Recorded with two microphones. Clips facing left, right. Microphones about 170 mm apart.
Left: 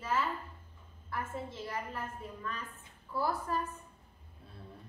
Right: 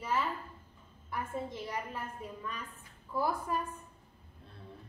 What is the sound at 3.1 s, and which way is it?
Speech, 15° right (ahead or behind).